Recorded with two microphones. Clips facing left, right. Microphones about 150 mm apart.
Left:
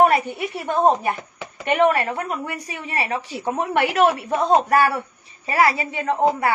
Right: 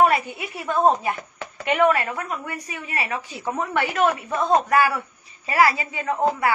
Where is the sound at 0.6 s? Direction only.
35° left (ahead or behind).